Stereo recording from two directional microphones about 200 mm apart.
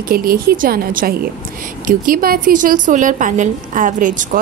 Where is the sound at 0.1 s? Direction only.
50° right (ahead or behind).